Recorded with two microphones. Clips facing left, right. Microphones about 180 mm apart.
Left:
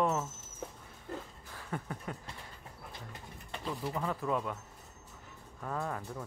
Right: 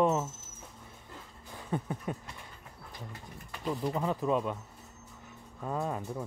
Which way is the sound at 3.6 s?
20° right (ahead or behind).